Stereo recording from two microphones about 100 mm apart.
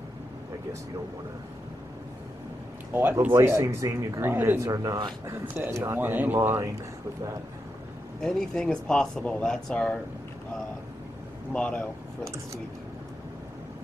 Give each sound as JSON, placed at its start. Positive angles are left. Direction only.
{"t": 2.9, "sound": "speech", "side_deg": -20}
{"t": 4.6, "sound": "speech", "side_deg": -35}
{"t": 5.3, "sound": "speech", "side_deg": -25}
{"t": 8.2, "sound": "speech", "side_deg": 5}
{"t": 11.5, "sound": "speech", "side_deg": 10}